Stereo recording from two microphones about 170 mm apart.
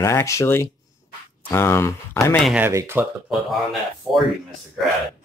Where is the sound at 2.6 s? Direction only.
15° right (ahead or behind).